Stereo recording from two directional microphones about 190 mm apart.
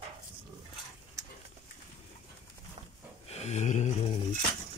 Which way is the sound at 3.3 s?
35° left (ahead or behind).